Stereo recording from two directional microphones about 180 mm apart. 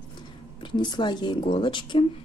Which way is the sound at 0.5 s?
25° left (ahead or behind).